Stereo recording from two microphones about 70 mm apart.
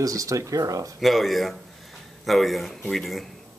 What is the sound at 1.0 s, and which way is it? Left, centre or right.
Speech, centre.